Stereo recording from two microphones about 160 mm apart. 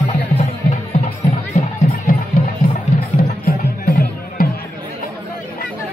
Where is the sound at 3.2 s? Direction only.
60° left (ahead or behind).